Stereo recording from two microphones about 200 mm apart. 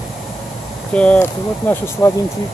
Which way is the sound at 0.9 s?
10° left (ahead or behind).